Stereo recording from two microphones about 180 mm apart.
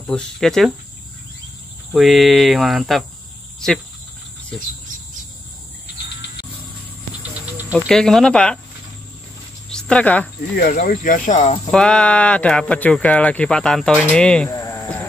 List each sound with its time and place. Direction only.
0.0 s speech: 5° left (ahead or behind)
1.9 s speech: centre (ahead or behind)
7.9 s speech: 5° left (ahead or behind)
9.7 s speech: 5° left (ahead or behind)
10.5 s speech: 60° left (ahead or behind); by 11.7 s 40° left (ahead or behind)
11.7 s speech: 5° left (ahead or behind)
14.5 s sheep: 15° left (ahead or behind)